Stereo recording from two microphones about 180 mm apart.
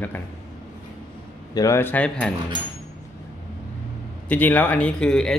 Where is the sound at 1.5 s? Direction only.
20° left (ahead or behind).